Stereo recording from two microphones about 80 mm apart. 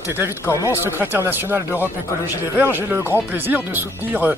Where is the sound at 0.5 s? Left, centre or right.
Left.